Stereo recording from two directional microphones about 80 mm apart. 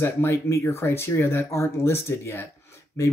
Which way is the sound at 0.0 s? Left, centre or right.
Left.